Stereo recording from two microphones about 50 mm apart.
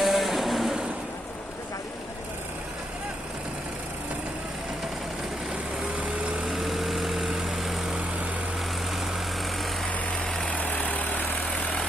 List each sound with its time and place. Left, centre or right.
0.0 s vehicle: centre
6.4 s vehicle: centre
10.5 s vehicle: left
11.4 s vehicle: left